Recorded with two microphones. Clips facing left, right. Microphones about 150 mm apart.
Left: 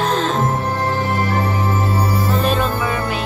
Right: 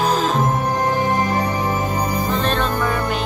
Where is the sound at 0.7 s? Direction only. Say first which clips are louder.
Right 1 dB; 15° right (ahead or behind).